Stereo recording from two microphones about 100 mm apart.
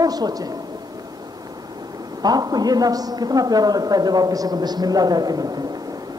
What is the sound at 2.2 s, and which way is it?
A man's voice, 40° right (ahead or behind).